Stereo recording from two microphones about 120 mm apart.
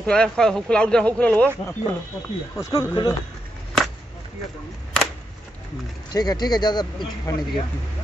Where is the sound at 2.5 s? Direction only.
20° left (ahead or behind).